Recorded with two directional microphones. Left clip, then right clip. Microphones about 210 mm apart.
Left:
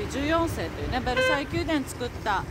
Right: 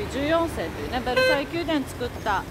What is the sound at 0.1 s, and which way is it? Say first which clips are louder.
Speech: right 3 dB; centre (ahead or behind).